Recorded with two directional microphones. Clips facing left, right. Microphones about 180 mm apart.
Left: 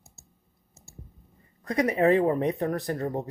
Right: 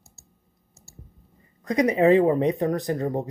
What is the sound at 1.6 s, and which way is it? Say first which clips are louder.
Speech: right 4 dB; 20° right (ahead or behind).